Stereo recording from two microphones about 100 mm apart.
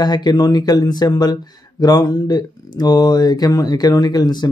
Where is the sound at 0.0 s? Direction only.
45° left (ahead or behind).